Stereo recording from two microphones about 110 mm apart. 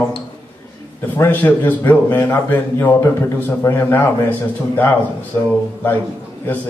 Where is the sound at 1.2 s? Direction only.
15° left (ahead or behind).